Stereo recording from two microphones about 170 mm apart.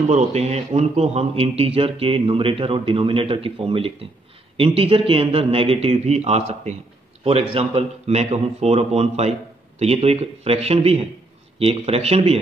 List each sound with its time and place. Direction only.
0.1 s a man's voice: 40° right (ahead or behind)